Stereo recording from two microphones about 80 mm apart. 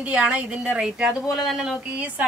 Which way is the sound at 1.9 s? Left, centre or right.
Centre.